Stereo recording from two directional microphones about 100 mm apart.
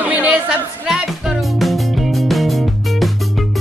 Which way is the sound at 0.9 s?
5° right (ahead or behind).